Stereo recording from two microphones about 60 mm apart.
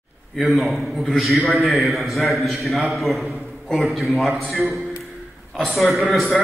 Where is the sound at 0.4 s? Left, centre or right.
Centre.